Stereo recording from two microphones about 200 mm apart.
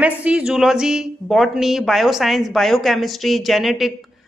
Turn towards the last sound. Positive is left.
turn(degrees=0)  # may be behind; listen again after turning